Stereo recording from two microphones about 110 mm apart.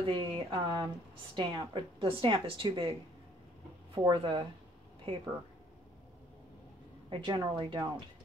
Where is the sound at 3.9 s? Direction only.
50° right (ahead or behind).